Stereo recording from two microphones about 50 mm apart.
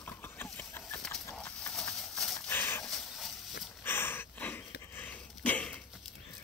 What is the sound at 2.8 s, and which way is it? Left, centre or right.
Dog, centre.